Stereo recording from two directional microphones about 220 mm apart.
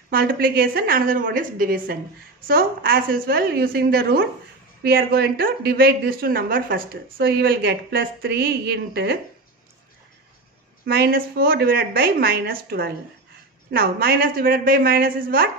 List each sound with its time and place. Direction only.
0.1 s a woman's voice: 40° right (ahead or behind)
10.9 s a woman's voice: 45° right (ahead or behind)